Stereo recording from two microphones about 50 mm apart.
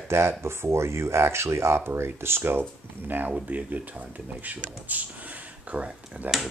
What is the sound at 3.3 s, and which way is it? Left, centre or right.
Speech, right.